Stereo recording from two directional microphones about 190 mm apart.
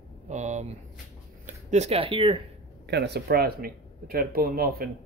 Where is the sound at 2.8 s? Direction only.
60° right (ahead or behind).